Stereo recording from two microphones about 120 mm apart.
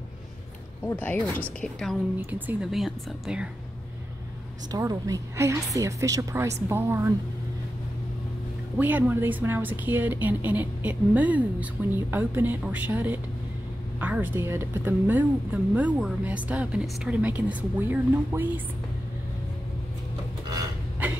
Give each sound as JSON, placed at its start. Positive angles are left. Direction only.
{"t": 0.8, "sound": "speech", "side_deg": 15}
{"t": 2.3, "sound": "speech", "side_deg": -15}
{"t": 2.7, "sound": "speech", "side_deg": 0}
{"t": 4.6, "sound": "a woman's voice", "side_deg": -30}
{"t": 8.7, "sound": "speech", "side_deg": -15}
{"t": 21.0, "sound": "a sound", "side_deg": -15}